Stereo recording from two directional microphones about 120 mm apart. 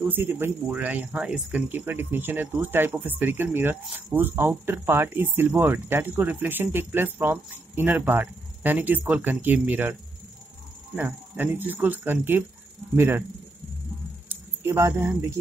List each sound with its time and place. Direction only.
0.0 s speech: 15° right (ahead or behind)
11.0 s speech: 15° right (ahead or behind)
14.3 s speech: 20° right (ahead or behind)